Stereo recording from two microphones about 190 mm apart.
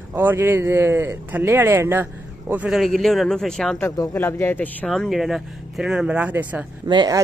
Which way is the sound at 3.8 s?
15° left (ahead or behind).